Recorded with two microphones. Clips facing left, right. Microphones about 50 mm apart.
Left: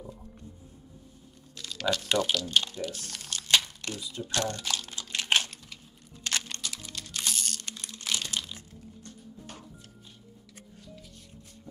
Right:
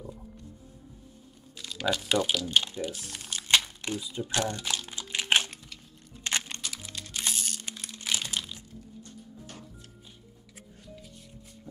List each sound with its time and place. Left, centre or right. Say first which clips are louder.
1.6 s speech: even; centre
3.4 s crumpling: right 1 dB; centre
6.2 s music: right 1 dB; right
6.7 s music: even; centre
7.8 s crumpling: right 1 dB; centre